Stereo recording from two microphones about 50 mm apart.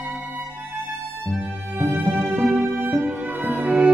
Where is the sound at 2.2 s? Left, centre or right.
Centre.